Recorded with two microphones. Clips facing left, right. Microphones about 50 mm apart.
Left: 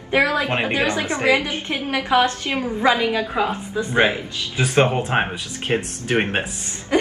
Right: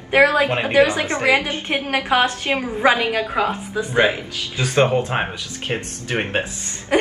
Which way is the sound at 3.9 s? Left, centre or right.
Left.